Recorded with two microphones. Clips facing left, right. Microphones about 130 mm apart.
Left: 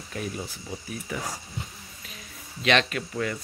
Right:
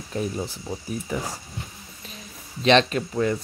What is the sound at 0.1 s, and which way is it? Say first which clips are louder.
Speech: right 6 dB; 30° right (ahead or behind).